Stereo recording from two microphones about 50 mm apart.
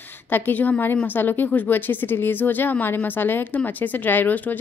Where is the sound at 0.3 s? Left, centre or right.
Left.